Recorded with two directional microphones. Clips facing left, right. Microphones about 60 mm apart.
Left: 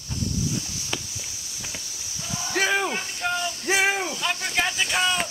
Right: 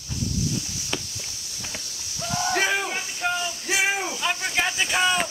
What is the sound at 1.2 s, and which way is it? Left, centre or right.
Walk, centre.